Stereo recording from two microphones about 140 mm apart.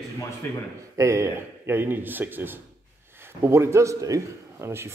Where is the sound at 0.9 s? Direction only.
20° right (ahead or behind).